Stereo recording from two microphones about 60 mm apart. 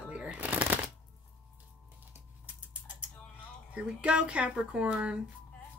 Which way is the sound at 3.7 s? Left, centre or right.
Centre.